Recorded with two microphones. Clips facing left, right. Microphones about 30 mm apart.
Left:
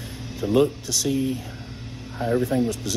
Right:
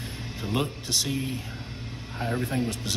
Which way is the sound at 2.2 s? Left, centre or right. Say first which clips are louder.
Left 6 dB; right.